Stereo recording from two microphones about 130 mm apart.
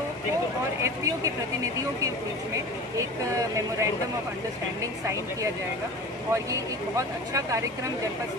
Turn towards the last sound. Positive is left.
turn(degrees=-25)  # may be behind; listen again after turning